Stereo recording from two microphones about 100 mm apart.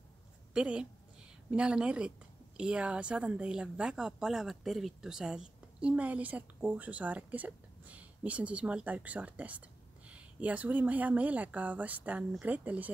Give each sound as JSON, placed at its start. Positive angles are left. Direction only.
{"t": 0.5, "sound": "a woman's voice", "side_deg": -10}